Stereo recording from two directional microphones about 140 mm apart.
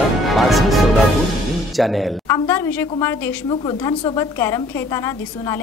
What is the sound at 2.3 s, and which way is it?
A woman's voice, 15° left (ahead or behind).